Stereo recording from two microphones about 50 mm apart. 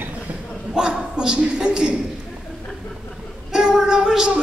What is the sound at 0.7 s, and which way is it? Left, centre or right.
A man's voice, centre.